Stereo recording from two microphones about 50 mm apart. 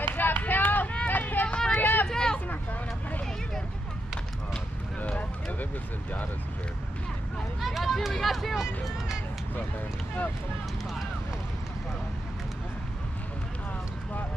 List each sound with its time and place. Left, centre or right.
0.0 s run: left
1.0 s a sound: left
1.8 s vehicle: left
2.0 s hubbub: centre
7.6 s hubbub: centre